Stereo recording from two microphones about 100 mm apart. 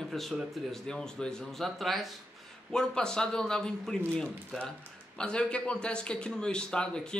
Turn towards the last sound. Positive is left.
turn(degrees=10)  # may be behind; listen again after turning